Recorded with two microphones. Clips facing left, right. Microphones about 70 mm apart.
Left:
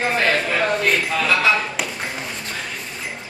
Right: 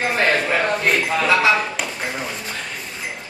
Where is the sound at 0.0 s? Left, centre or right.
Centre.